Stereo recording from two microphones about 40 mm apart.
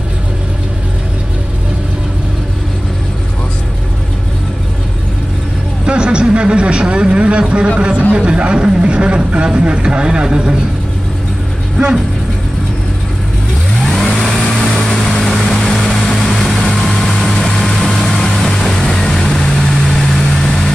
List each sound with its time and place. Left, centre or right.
5.9 s speech: right
14.2 s vehicle: centre